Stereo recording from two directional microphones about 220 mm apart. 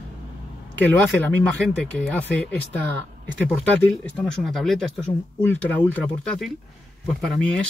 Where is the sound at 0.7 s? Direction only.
5° left (ahead or behind).